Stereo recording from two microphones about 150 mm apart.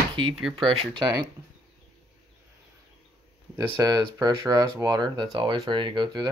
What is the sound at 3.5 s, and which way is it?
Speech, 25° right (ahead or behind).